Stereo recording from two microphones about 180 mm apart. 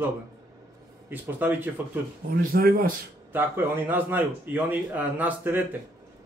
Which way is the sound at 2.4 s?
55° right (ahead or behind).